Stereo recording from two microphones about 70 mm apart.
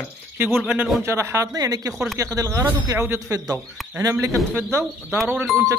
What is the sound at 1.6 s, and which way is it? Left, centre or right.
Speech, right.